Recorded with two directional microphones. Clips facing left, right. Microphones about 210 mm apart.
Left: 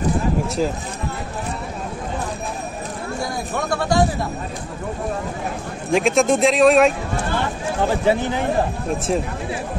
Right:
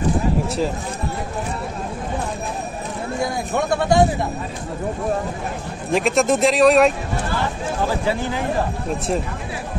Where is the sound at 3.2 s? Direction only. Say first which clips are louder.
Right 4 dB; 25° right (ahead or behind).